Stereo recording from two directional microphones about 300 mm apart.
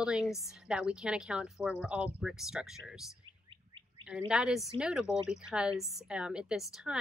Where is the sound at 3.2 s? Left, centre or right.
Centre.